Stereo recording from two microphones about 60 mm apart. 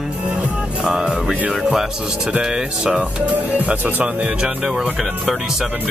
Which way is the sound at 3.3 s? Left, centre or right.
Right.